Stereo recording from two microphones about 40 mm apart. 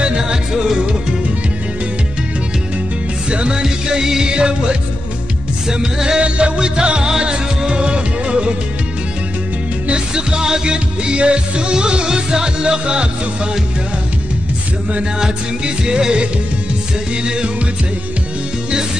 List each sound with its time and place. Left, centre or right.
0.0 s music: centre
3.3 s music: right
9.8 s music: right
15.1 s music: centre